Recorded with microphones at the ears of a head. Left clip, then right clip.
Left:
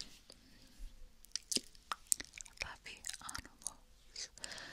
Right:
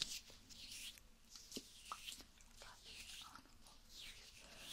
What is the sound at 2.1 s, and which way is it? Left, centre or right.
Chewing, left.